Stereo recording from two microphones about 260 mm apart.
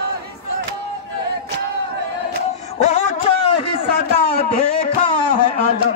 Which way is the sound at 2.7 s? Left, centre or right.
Left.